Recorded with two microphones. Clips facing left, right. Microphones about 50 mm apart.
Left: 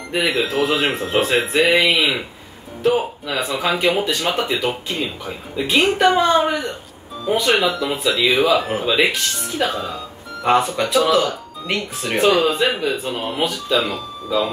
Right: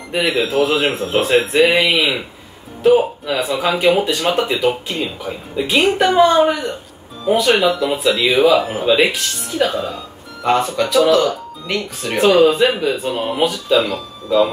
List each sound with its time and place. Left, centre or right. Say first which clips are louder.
0.1 s speech: right 2 dB; centre
10.4 s speech: right 1 dB; centre